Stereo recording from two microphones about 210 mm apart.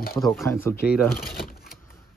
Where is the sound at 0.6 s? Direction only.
10° left (ahead or behind).